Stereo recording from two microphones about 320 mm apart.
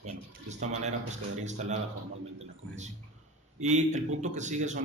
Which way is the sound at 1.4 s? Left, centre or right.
Right.